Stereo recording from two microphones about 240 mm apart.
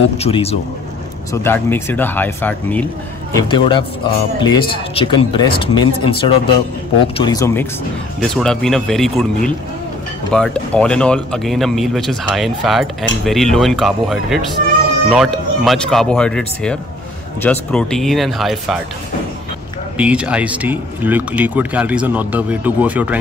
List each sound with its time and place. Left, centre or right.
0.2 s speech: left
1.3 s speech: centre
3.3 s speech: centre
8.2 s speech: centre
20.0 s speech: centre